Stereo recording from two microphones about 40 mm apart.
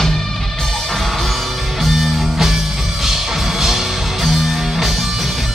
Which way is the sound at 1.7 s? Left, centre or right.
Centre.